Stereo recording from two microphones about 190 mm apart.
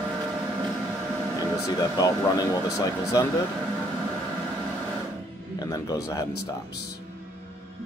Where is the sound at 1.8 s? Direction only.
20° left (ahead or behind).